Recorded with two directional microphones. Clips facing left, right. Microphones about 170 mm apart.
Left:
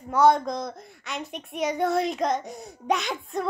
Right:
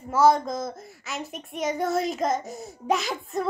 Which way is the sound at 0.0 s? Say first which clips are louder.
Even; centre (ahead or behind).